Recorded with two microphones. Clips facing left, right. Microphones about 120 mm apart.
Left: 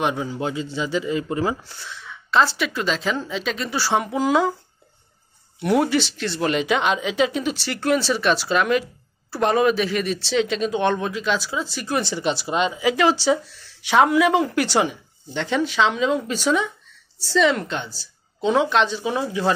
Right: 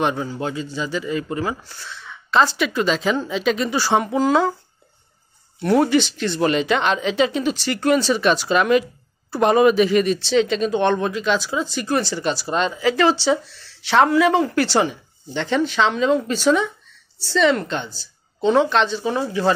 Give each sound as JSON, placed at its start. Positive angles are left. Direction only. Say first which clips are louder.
{"t": 0.0, "sound": "speech", "louder": "right 2 dB", "side_deg": 5}
{"t": 0.4, "sound": "a man's voice", "louder": "even", "side_deg": 20}
{"t": 1.9, "sound": "speech", "louder": "even", "side_deg": 5}
{"t": 5.6, "sound": "speech", "louder": "right 3 dB", "side_deg": 5}
{"t": 12.0, "sound": "speech", "louder": "right 1 dB", "side_deg": 20}